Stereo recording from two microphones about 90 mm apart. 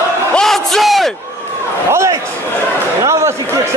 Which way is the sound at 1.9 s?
35° right (ahead or behind).